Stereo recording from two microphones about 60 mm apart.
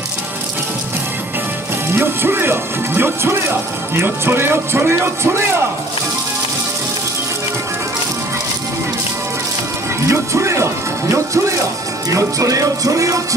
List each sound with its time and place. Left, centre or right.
1.9 s a man's voice: right
10.0 s speech: right